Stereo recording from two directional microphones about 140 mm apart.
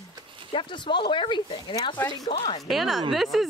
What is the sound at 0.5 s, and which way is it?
Speech, 35° left (ahead or behind).